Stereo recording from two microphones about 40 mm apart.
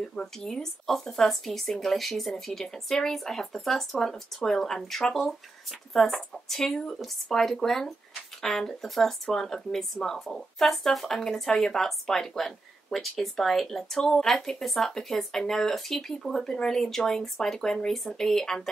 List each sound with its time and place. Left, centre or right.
0.1 s speech: centre